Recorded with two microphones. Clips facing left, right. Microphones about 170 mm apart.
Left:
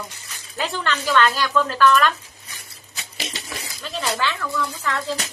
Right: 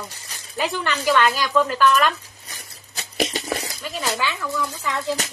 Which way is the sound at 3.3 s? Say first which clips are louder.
Right 8 dB; 40° right (ahead or behind).